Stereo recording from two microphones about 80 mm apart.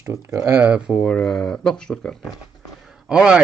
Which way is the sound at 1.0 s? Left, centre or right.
Centre.